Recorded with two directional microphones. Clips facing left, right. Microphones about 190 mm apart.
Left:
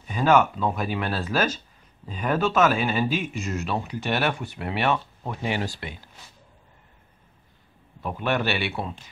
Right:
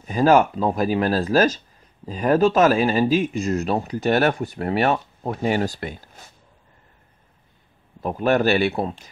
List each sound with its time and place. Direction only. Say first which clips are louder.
0.0 s speech: right 4 dB; 40° right (ahead or behind)
8.0 s speech: right 7 dB; 40° right (ahead or behind)